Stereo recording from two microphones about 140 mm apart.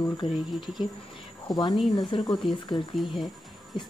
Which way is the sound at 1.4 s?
30° left (ahead or behind).